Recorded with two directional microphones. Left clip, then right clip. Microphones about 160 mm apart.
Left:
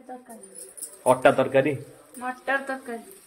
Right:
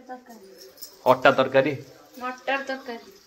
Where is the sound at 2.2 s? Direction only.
90° left.